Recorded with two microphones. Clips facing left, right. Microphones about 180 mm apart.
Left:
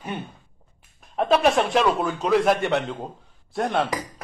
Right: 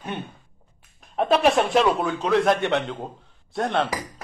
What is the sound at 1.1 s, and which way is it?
A man's voice, centre (ahead or behind).